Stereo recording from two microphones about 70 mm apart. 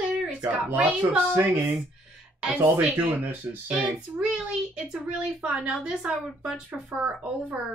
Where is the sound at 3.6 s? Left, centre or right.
Centre.